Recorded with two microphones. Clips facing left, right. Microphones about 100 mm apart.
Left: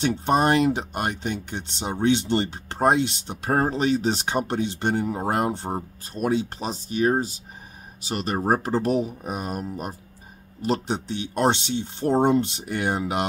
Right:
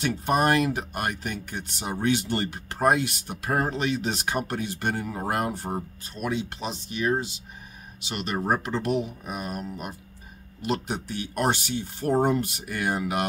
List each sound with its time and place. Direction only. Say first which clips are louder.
0.0 s speech: left 3 dB; 30° left (ahead or behind)
6.1 s speech: left 5 dB; 40° left (ahead or behind)